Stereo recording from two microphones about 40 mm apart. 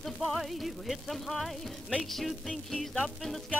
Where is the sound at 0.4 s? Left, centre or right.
Centre.